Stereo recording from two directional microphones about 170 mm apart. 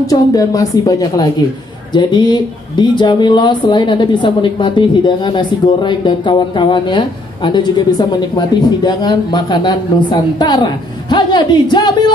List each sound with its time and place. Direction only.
0.0 s speech: 20° left (ahead or behind)